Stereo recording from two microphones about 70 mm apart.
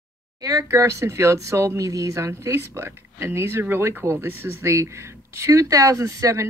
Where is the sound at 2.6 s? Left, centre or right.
Right.